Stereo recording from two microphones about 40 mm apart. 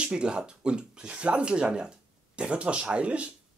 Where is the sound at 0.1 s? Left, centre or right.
Right.